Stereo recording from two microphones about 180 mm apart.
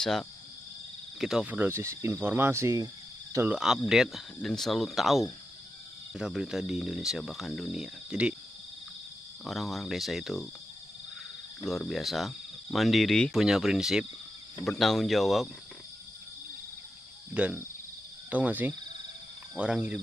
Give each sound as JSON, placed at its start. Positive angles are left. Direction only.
{"t": 0.0, "sound": "speech", "side_deg": 0}
{"t": 3.3, "sound": "speech", "side_deg": -5}
{"t": 9.4, "sound": "speech", "side_deg": 0}
{"t": 11.6, "sound": "speech", "side_deg": 0}
{"t": 17.3, "sound": "speech", "side_deg": -10}